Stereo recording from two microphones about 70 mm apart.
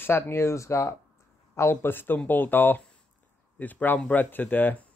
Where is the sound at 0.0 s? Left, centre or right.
Left.